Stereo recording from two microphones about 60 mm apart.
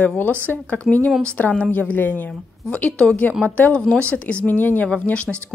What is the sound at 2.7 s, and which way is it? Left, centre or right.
A woman's voice, centre.